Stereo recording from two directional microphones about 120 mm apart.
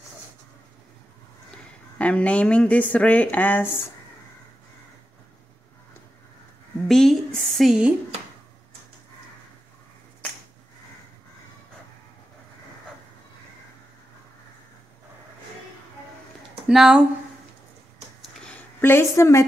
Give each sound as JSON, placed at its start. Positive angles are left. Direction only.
{"t": 2.0, "sound": "speech", "side_deg": 10}
{"t": 6.9, "sound": "speech", "side_deg": 5}
{"t": 16.6, "sound": "speech", "side_deg": -5}
{"t": 18.4, "sound": "a sound", "side_deg": 10}
{"t": 18.9, "sound": "a woman's voice", "side_deg": 20}